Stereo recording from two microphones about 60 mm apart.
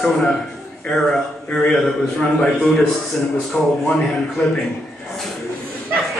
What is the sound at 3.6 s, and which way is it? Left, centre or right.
Speech, centre.